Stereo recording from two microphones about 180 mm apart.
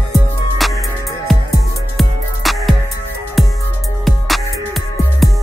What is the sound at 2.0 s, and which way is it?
Music, centre (ahead or behind).